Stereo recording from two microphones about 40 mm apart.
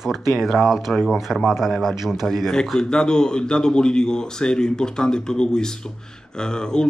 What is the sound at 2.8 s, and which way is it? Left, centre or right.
Speech, centre.